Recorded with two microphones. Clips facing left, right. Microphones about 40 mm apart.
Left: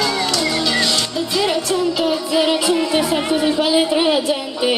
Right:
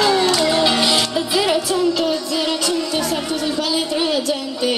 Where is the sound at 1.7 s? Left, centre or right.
Centre.